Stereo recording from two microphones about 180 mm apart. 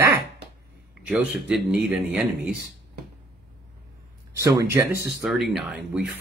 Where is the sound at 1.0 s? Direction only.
5° right (ahead or behind).